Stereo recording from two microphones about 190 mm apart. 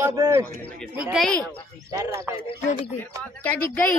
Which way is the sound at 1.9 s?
15° right (ahead or behind).